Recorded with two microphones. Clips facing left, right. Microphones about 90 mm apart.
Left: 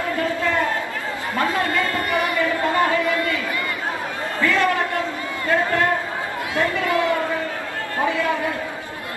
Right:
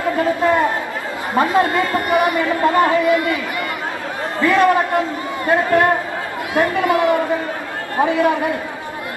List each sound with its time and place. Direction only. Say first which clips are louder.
0.2 s a man's voice: right 6 dB; 20° right (ahead or behind)
4.4 s a man's voice: right 6 dB; 20° right (ahead or behind)